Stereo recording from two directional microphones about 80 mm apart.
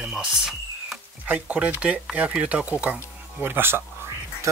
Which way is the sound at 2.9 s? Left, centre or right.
Right.